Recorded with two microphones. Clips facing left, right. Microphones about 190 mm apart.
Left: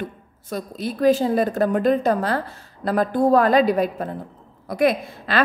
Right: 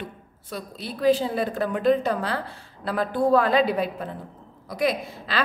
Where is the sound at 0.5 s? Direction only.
45° left (ahead or behind).